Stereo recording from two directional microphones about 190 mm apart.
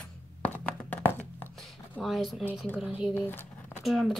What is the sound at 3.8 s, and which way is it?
Speech, centre (ahead or behind).